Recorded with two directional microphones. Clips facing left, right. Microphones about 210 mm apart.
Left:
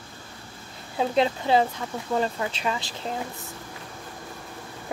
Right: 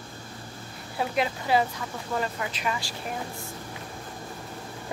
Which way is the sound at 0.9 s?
25° left (ahead or behind).